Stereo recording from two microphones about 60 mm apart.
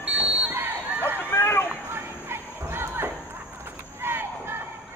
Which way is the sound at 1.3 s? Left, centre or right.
Left.